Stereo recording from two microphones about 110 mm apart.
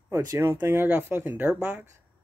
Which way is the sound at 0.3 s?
30° right (ahead or behind).